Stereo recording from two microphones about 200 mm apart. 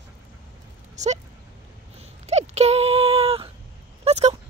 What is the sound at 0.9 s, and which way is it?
Speech, 35° right (ahead or behind).